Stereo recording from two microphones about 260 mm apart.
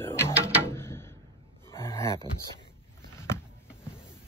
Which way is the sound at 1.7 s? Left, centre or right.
Centre.